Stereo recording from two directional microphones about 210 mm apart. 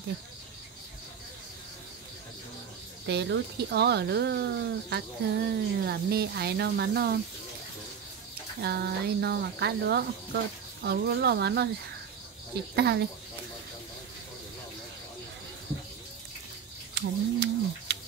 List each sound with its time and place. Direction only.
3.1 s speech: 55° right (ahead or behind)
8.5 s speech: 50° right (ahead or behind)
12.7 s speech: 50° right (ahead or behind)
16.9 s a sound: 55° right (ahead or behind)